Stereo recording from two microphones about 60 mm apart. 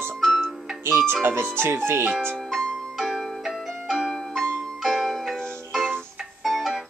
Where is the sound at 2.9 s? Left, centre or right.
Centre.